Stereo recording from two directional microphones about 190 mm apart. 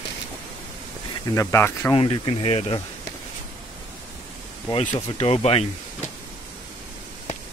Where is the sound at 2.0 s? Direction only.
30° left (ahead or behind).